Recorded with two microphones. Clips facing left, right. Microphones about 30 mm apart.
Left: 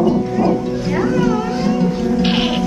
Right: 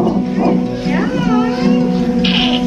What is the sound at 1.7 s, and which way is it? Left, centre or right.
Music, centre.